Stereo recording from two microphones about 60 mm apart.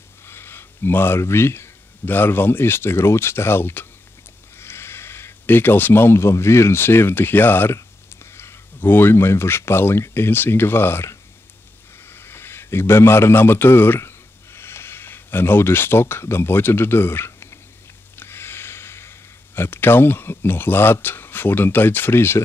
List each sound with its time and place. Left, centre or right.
0.3 s a man's voice: left